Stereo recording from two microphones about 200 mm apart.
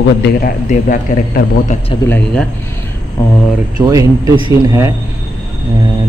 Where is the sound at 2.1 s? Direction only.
5° left (ahead or behind).